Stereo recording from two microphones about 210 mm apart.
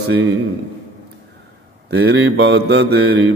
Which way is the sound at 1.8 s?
55° right (ahead or behind).